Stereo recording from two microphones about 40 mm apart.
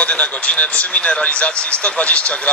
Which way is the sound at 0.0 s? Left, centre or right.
Left.